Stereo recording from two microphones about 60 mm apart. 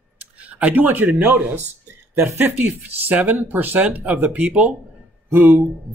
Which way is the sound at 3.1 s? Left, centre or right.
Right.